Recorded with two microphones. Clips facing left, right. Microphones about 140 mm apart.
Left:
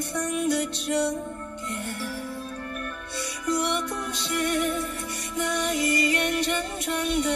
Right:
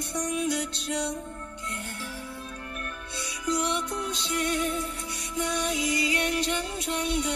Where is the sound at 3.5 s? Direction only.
55° left (ahead or behind).